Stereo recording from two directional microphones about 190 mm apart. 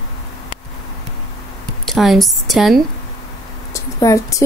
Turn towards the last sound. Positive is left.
turn(degrees=15)  # may be behind; listen again after turning